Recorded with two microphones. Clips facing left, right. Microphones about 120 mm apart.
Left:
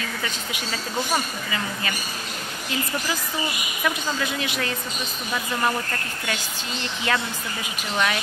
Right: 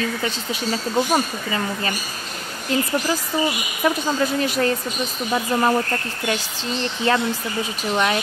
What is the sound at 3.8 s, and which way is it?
Speech, 40° right (ahead or behind).